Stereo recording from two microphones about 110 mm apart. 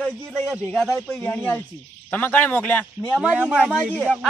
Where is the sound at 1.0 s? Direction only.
15° left (ahead or behind).